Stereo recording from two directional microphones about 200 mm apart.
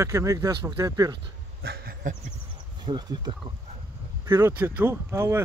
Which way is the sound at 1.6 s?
45° right (ahead or behind).